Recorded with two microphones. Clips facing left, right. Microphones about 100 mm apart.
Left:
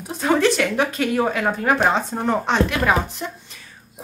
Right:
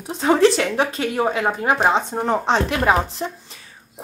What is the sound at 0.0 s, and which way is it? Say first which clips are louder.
Speech: right 3 dB; 25° right (ahead or behind).